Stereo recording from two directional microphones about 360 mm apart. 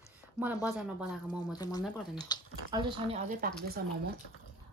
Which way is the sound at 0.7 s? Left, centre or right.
Centre.